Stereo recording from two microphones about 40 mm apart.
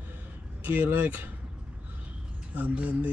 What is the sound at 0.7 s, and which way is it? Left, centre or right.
Speech, right.